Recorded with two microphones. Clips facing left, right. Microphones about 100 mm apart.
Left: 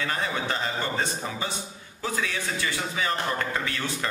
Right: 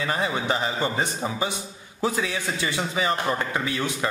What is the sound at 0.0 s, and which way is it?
A man's voice, 15° right (ahead or behind).